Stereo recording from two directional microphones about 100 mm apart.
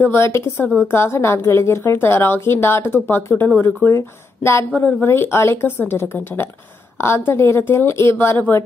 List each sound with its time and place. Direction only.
0.0 s speech: 25° left (ahead or behind)